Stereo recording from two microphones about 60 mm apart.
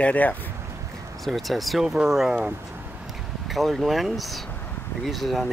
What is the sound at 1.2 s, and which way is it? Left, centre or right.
Speech, centre.